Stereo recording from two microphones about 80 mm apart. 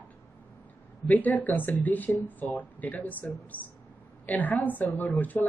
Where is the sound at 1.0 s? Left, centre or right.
Left.